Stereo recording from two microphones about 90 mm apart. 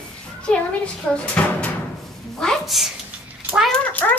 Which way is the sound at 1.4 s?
15° left (ahead or behind).